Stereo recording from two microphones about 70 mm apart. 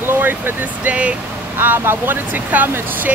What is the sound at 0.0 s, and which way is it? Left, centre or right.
Speech, right.